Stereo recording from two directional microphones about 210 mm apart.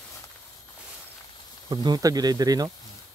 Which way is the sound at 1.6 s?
20° right (ahead or behind).